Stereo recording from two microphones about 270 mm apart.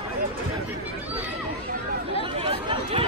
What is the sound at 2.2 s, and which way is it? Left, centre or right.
Chatter, centre.